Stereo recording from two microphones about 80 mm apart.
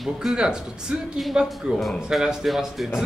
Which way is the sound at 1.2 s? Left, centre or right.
Centre.